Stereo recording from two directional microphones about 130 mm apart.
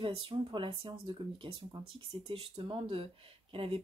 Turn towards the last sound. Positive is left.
turn(degrees=-45)  # may be behind; listen again after turning